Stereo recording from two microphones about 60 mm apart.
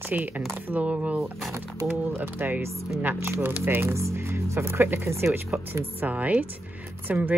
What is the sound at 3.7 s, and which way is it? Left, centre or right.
Speech, right.